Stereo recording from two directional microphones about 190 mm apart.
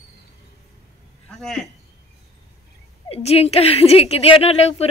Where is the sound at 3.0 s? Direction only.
30° left (ahead or behind).